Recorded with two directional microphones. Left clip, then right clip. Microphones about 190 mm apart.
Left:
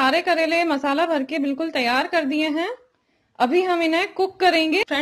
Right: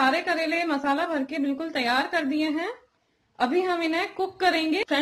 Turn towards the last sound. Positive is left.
turn(degrees=35)  # may be behind; listen again after turning